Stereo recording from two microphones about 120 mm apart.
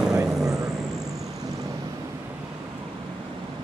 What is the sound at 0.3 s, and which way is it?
Vehicle, 5° right (ahead or behind).